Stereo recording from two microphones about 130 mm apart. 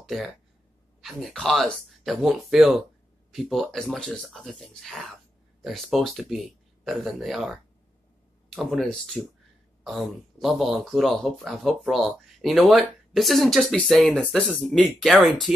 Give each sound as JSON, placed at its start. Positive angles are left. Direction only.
{"t": 0.0, "sound": "speech", "side_deg": 0}